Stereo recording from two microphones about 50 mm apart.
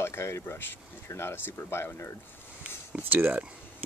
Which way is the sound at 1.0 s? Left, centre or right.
Left.